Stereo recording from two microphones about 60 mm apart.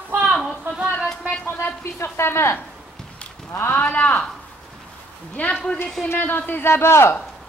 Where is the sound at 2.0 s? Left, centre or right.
Left.